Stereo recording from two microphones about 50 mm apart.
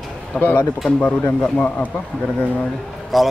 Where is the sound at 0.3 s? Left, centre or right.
Left.